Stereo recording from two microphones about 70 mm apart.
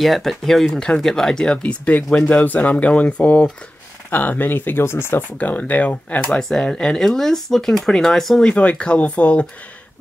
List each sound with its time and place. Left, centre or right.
0.0 s speech: centre
8.5 s speech: centre